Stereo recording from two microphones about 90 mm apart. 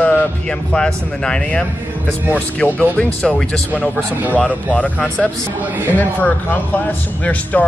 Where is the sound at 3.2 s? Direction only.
5° left (ahead or behind).